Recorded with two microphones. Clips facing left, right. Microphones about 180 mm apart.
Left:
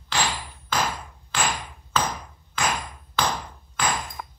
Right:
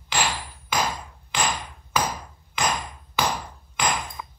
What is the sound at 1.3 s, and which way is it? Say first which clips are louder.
Hammer: even; 15° right (ahead or behind).